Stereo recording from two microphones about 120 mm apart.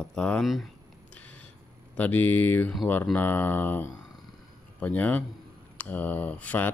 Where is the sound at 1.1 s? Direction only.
10° left (ahead or behind).